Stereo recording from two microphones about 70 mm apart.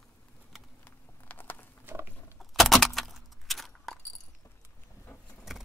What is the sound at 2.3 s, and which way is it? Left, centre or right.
Keys jangling, centre.